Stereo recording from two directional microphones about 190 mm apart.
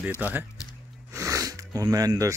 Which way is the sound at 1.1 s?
15° right (ahead or behind).